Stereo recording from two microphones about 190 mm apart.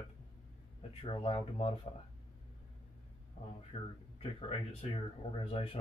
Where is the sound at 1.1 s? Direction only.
30° left (ahead or behind).